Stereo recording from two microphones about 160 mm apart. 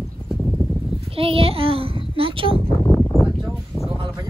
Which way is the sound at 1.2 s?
35° right (ahead or behind).